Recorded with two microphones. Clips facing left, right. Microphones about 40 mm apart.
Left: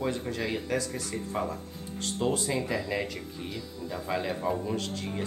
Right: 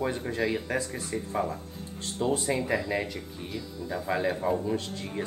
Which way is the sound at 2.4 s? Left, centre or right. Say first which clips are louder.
Right 2 dB; right.